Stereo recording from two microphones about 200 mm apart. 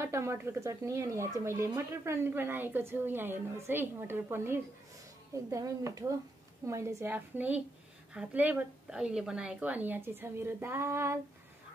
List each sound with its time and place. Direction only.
0.0 s speech: 15° right (ahead or behind)